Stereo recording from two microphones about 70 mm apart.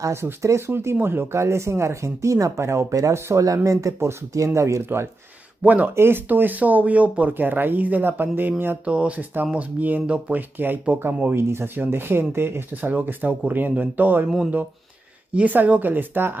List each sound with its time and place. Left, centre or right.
0.0 s speech: right
5.6 s speech: right
5.9 s speech: right
8.8 s speech: centre
15.3 s speech: right